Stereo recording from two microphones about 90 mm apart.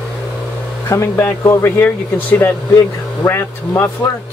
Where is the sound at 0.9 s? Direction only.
30° left (ahead or behind).